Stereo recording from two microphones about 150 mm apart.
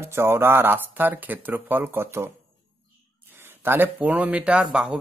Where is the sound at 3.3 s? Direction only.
15° right (ahead or behind).